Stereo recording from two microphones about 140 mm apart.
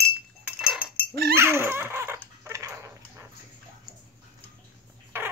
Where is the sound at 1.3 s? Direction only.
15° right (ahead or behind).